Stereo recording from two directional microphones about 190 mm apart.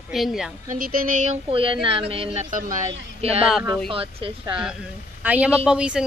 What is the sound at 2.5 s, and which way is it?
Speech, 45° right (ahead or behind).